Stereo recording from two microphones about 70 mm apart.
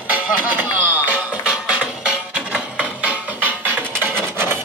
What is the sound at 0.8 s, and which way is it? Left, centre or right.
Music, right.